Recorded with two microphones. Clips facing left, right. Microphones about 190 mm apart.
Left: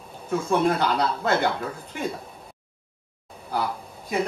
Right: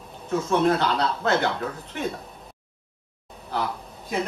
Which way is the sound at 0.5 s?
10° left (ahead or behind).